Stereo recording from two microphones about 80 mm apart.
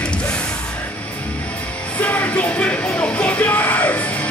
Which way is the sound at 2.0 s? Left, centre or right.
Left.